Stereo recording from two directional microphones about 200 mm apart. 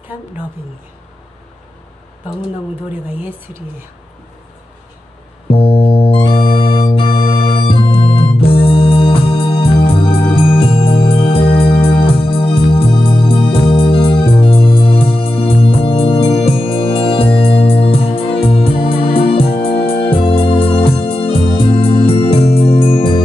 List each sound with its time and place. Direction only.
2.9 s speech: 10° right (ahead or behind)
5.5 s organ: 30° left (ahead or behind)
19.7 s music: 55° left (ahead or behind)
20.1 s organ: 25° left (ahead or behind)